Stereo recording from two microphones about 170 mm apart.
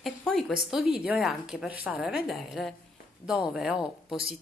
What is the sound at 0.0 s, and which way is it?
Speech, centre (ahead or behind).